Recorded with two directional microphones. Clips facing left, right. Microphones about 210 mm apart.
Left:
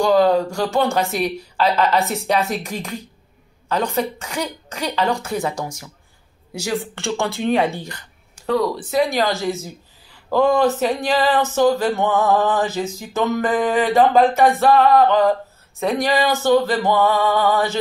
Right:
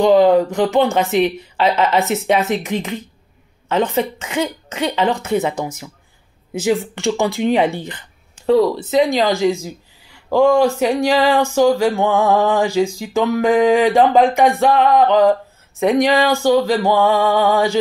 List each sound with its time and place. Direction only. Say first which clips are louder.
0.0 s a woman's voice: right 4 dB; 20° right (ahead or behind)
6.5 s speech: right 6 dB; 15° right (ahead or behind)